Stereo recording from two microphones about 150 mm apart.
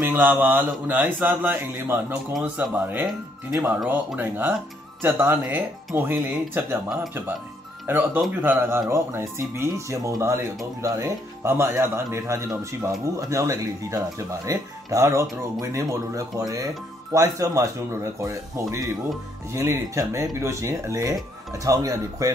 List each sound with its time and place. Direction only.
0.0 s speech: 10° right (ahead or behind)
7.8 s speech: 15° right (ahead or behind)